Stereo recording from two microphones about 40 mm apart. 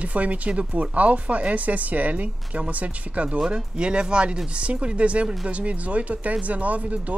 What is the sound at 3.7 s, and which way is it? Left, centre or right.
Speech, right.